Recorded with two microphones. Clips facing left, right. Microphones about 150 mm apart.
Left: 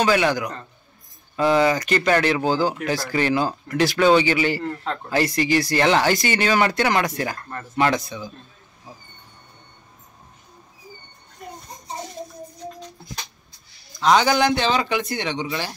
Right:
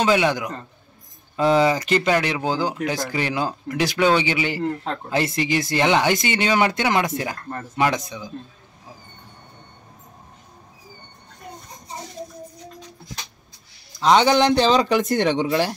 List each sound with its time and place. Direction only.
0.0 s speech: 20° right (ahead or behind)
2.0 s speech: 15° right (ahead or behind)
14.0 s speech: 25° right (ahead or behind)
14.8 s speech: 40° right (ahead or behind)